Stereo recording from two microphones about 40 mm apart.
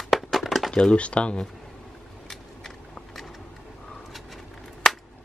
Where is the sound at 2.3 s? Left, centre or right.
Centre.